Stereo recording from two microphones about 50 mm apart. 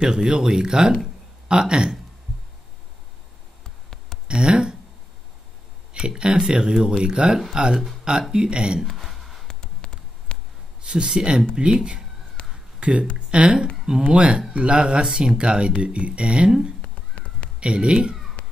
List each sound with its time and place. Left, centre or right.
0.0 s speech: centre
1.0 s a sound: centre
4.3 s speech: centre
5.9 s speech: centre
8.8 s a sound: centre
9.5 s a sound: centre
10.8 s speech: centre
12.4 s a sound: left
12.8 s speech: right
16.8 s crow: left
17.6 s speech: centre
18.4 s music: left